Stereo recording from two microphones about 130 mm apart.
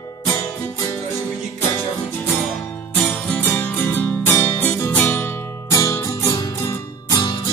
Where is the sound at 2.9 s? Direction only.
10° left (ahead or behind).